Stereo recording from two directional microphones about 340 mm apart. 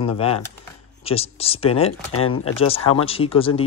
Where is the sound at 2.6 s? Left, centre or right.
Centre.